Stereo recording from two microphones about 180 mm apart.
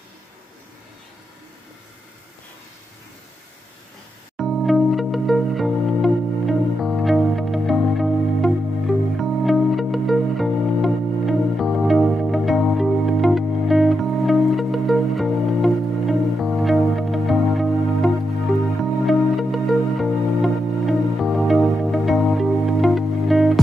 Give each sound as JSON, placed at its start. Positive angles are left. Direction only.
{"t": 4.4, "sound": "music", "side_deg": 0}